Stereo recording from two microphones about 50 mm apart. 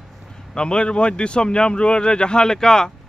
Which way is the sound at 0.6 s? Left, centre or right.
Centre.